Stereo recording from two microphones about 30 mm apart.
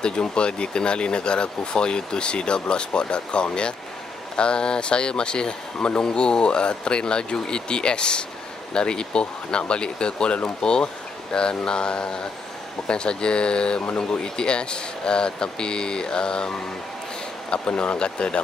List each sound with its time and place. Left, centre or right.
0.0 s speech: left
10.6 s a sound: left
12.8 s speech: left